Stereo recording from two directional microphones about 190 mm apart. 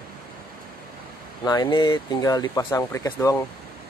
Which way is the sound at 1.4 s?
20° left (ahead or behind).